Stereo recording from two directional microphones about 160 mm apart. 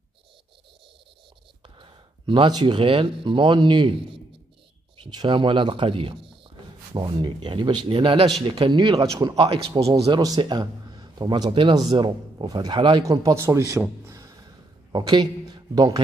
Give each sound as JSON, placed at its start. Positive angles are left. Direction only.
{"t": 1.8, "sound": "speech", "side_deg": -30}
{"t": 9.4, "sound": "speech", "side_deg": -35}
{"t": 10.2, "sound": "a man's voice", "side_deg": -25}